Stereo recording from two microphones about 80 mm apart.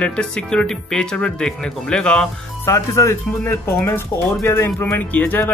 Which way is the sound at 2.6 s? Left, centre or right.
Left.